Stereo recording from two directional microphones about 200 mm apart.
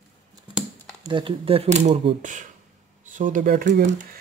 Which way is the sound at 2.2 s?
40° right (ahead or behind).